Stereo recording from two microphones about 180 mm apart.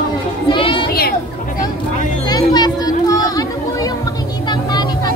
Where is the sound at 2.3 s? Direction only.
20° left (ahead or behind).